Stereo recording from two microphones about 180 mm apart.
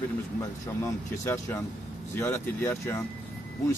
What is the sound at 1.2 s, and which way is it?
Speech, 15° left (ahead or behind).